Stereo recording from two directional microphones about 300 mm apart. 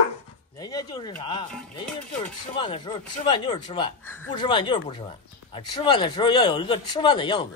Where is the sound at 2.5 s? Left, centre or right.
Centre.